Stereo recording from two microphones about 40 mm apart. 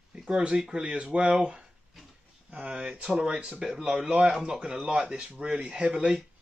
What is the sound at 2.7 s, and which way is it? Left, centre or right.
Speech, right.